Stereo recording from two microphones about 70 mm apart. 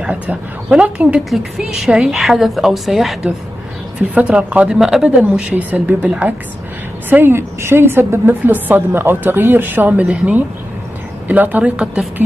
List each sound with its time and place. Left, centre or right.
0.0 s a woman's voice: centre
4.0 s a woman's voice: right
5.5 s a woman's voice: right